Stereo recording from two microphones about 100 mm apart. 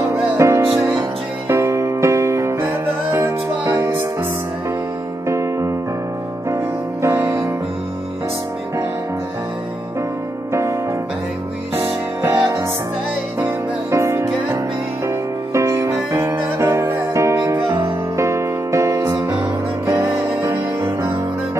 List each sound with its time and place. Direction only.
0.4 s music: 30° right (ahead or behind)
5.3 s electric piano: 30° right (ahead or behind)
6.5 s music: 30° right (ahead or behind)
10.5 s music: 30° right (ahead or behind)
13.9 s music: 30° right (ahead or behind)
20.3 s music: 25° right (ahead or behind)